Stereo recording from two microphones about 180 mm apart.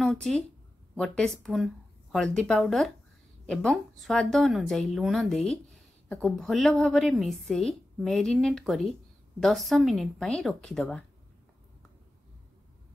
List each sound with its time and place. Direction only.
0.0 s a woman's voice: centre (ahead or behind)